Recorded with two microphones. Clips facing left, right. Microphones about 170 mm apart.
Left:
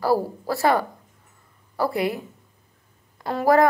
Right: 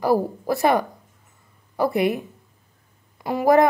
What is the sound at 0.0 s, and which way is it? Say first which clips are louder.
Speech: right 2 dB; 20° right (ahead or behind).